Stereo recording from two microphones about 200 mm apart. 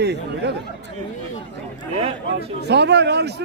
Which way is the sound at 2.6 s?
55° right (ahead or behind).